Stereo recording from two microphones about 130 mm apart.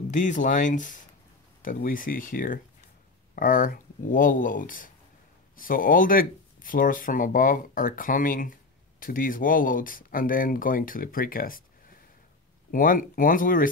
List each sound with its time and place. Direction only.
0.1 s speech: 75° left (ahead or behind); by 11.6 s 90° left
12.7 s speech: 90° left